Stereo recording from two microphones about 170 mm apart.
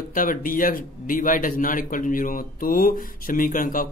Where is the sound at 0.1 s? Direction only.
55° left (ahead or behind).